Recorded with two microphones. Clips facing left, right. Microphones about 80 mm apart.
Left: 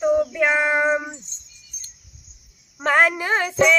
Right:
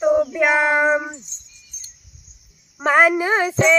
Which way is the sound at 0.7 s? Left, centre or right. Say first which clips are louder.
Right 2 dB; centre.